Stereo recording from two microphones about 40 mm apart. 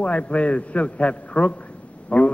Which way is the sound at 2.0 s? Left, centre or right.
Left.